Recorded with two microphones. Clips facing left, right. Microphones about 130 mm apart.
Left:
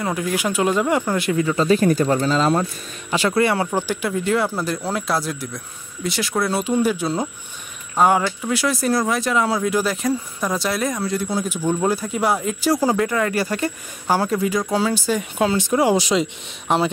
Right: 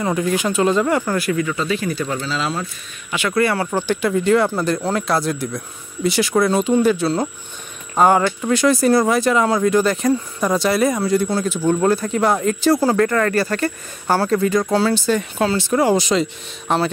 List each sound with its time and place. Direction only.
0.0 s speech: 5° left (ahead or behind); by 1.6 s 20° left (ahead or behind)
1.6 s speech: 40° left (ahead or behind)
3.1 s speech: 30° left (ahead or behind); by 11.2 s centre (ahead or behind)
11.2 s speech: 15° left (ahead or behind)